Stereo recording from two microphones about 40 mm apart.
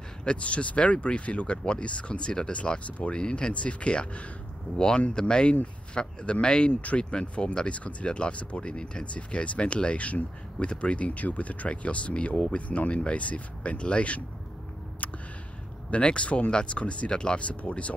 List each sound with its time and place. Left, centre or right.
0.2 s speech: left
15.9 s speech: left
17.5 s speech: left